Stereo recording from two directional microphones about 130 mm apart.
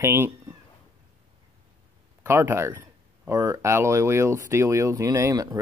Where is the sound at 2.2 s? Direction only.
20° right (ahead or behind).